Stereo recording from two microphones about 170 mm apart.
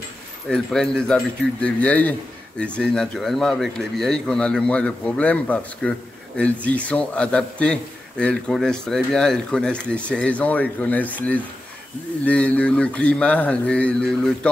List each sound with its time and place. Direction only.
0.5 s a man's voice: centre (ahead or behind)